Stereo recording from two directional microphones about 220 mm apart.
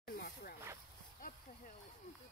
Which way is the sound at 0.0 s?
45° left (ahead or behind).